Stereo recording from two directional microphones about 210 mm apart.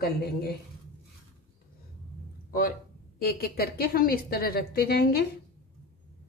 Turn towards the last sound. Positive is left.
turn(degrees=50)  # may be behind; listen again after turning